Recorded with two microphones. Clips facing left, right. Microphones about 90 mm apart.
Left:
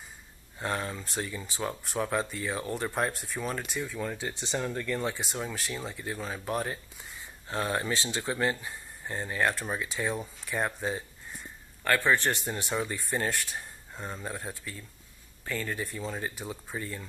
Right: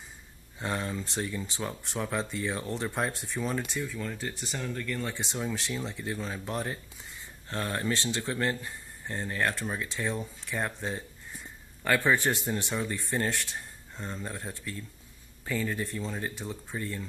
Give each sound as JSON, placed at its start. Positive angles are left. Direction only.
{"t": 0.6, "sound": "speech", "side_deg": 0}
{"t": 3.8, "sound": "speech", "side_deg": 15}
{"t": 5.0, "sound": "speech", "side_deg": 5}
{"t": 11.8, "sound": "speech", "side_deg": -10}